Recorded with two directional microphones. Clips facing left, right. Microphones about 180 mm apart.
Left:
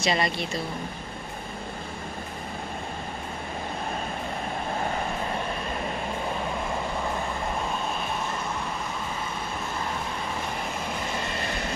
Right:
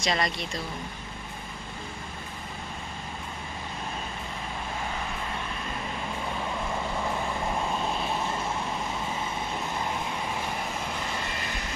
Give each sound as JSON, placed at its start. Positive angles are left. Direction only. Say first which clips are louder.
{"t": 0.0, "sound": "speech", "louder": "left 3 dB", "side_deg": 5}